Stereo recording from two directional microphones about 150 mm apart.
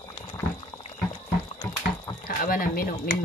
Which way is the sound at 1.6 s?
30° left (ahead or behind).